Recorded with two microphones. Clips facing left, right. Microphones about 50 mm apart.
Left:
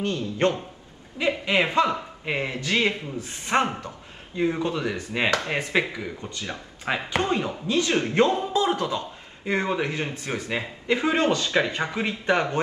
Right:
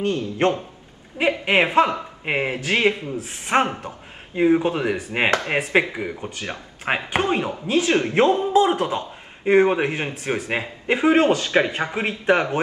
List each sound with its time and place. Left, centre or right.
1.1 s speech: right
7.1 s speech: right